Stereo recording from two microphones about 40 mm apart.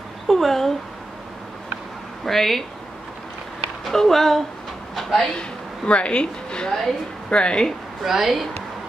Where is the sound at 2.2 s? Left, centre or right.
Centre.